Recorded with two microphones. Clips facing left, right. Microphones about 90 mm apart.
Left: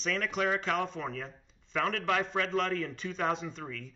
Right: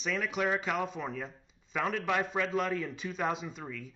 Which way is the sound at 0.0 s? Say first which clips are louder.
Left 1 dB; 5° right (ahead or behind).